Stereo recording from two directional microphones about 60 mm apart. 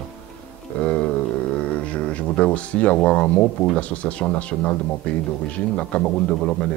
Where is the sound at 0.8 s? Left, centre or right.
Left.